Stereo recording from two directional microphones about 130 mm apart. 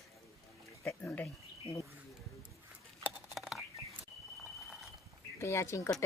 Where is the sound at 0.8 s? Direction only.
10° left (ahead or behind).